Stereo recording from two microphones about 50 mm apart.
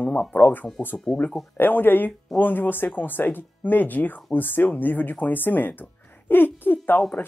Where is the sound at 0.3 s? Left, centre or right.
Left.